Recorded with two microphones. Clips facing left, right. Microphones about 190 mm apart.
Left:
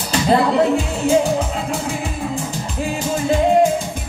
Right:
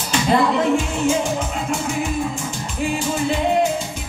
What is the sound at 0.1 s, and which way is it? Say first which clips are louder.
Speech: left 2 dB; 35° left (ahead or behind).